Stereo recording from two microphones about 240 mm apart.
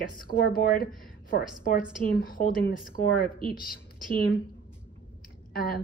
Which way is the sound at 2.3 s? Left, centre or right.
Left.